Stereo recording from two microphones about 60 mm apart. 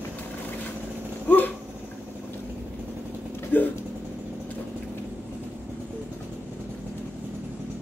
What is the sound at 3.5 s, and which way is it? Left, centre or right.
Vehicle, left.